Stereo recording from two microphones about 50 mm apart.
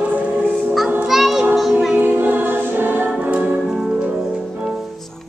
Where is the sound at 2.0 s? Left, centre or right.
Right.